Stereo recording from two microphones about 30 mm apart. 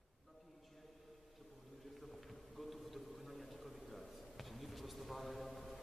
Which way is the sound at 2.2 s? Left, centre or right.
Centre.